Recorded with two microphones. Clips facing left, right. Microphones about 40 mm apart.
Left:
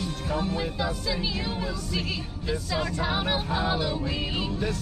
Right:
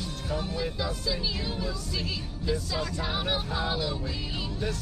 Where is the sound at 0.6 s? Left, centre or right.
Left.